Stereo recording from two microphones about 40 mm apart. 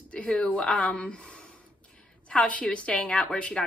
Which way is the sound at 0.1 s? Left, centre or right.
Left.